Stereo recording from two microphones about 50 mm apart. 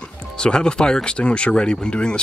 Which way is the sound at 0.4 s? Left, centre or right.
Centre.